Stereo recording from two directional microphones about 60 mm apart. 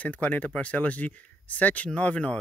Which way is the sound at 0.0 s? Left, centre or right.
Left.